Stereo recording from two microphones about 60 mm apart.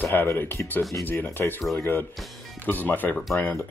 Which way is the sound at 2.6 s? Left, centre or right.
Left.